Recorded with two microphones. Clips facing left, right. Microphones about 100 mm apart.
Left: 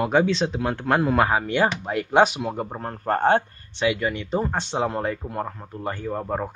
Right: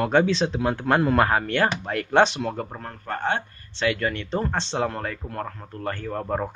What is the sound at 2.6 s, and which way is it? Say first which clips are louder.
Speech: left 2 dB; 20° left (ahead or behind).